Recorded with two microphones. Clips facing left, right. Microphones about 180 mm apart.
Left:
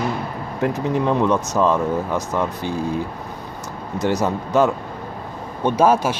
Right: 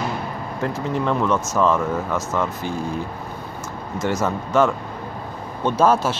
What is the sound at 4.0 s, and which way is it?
Speech, 15° left (ahead or behind).